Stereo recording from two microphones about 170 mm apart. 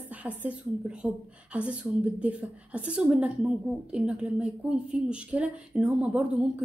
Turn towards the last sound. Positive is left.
turn(degrees=-10)  # may be behind; listen again after turning